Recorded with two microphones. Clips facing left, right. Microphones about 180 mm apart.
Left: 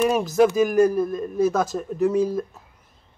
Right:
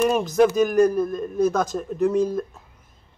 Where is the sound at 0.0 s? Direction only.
5° left (ahead or behind).